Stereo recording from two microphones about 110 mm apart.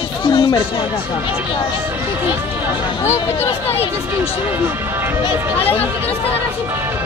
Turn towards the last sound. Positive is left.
turn(degrees=60)  # may be behind; listen again after turning